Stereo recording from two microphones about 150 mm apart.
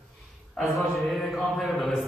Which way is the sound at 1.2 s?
Centre (ahead or behind).